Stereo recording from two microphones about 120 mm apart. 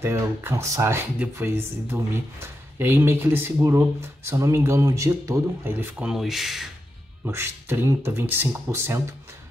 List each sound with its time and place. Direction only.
0.0 s speech: 20° right (ahead or behind); by 6.7 s centre (ahead or behind)
7.2 s speech: 20° right (ahead or behind)